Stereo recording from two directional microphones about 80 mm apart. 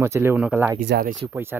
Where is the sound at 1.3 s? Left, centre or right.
Right.